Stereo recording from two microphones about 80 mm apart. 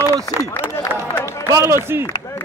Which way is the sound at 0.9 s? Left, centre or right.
Right.